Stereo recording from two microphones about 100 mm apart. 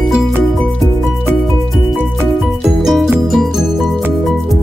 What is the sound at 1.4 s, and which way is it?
Music, centre (ahead or behind).